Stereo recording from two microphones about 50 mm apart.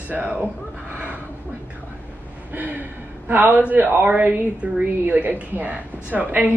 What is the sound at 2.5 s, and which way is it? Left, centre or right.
A man's voice, right.